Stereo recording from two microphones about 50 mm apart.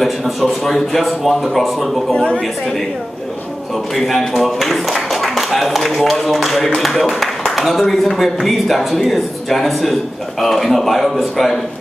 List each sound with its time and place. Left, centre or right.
0.0 s a man's voice: centre
2.1 s a woman's voice: left
3.7 s a man's voice: centre